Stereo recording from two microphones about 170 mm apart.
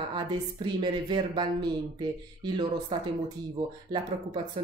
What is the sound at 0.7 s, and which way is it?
Speech, 25° right (ahead or behind).